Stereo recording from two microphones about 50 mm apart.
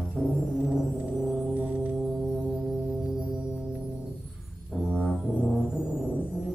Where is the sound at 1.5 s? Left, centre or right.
Right.